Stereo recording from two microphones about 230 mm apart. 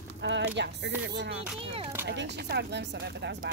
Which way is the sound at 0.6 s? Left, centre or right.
Right.